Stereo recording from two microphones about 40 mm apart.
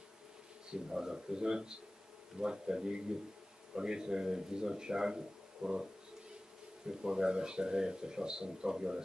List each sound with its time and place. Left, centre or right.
0.7 s speech: centre
6.9 s speech: centre